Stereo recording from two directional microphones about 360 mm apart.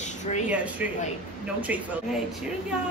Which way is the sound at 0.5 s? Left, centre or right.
Centre.